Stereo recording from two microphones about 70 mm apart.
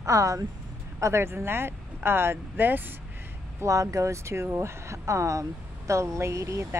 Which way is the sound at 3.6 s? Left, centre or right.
Right.